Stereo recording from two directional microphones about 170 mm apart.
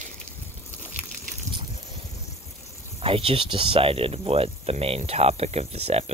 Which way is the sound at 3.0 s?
35° right (ahead or behind).